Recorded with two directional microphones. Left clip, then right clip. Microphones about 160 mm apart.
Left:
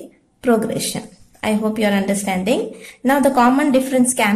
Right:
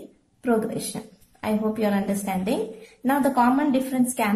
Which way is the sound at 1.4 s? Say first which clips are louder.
Left 6 dB; 15° left (ahead or behind).